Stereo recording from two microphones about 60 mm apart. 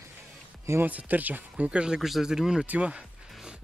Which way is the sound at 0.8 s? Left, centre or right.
Right.